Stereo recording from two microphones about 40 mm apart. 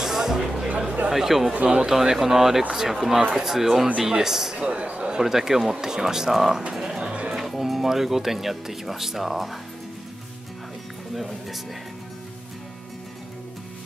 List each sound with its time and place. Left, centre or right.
0.0 s music: centre
0.7 s chatter: right
1.1 s speech: centre
4.6 s speech: right
5.2 s speech: centre
6.7 s bird: centre
7.3 s speech: centre
11.1 s speech: centre